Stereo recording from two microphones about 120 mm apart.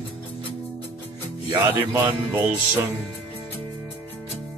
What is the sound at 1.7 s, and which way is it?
Speech, 15° right (ahead or behind).